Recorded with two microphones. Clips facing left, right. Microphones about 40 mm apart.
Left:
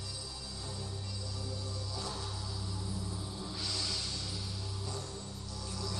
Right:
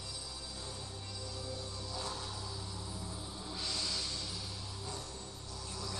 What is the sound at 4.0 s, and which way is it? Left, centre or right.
Music, right.